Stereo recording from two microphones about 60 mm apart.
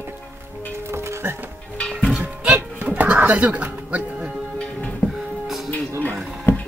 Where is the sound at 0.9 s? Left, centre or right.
Right.